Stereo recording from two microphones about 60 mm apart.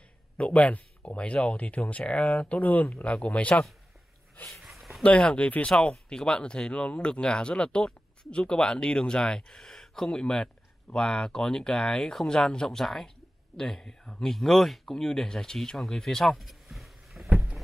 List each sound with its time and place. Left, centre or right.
0.4 s speech: left
4.6 s a sound: centre
5.0 s speech: centre